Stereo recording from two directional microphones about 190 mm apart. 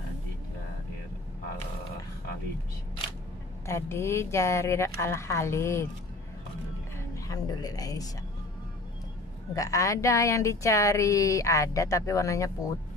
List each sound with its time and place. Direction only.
3.6 s a woman's voice: 15° left (ahead or behind)
7.0 s a sound: 20° left (ahead or behind)
9.5 s a woman's voice: 15° left (ahead or behind)